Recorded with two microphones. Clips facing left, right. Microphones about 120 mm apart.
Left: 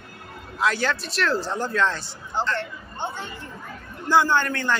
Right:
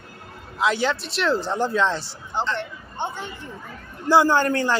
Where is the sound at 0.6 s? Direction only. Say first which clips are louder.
Right 2 dB; 20° right (ahead or behind).